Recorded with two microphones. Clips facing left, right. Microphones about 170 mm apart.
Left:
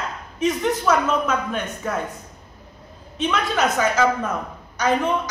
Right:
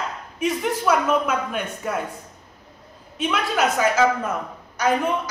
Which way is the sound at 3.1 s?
5° right (ahead or behind).